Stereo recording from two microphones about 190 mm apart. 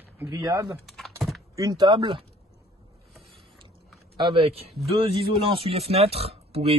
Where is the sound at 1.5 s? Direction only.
20° right (ahead or behind).